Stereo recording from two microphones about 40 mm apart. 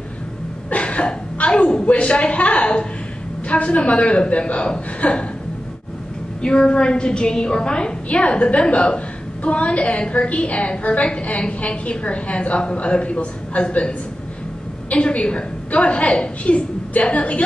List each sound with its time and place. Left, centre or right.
0.7 s a woman's voice: left
6.4 s a woman's voice: left